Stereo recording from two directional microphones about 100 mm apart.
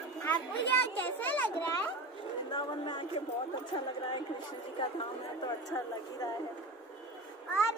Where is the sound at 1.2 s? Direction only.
15° left (ahead or behind).